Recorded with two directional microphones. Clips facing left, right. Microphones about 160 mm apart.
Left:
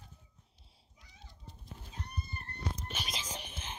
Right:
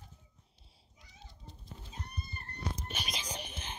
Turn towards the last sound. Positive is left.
turn(degrees=-15)  # may be behind; listen again after turning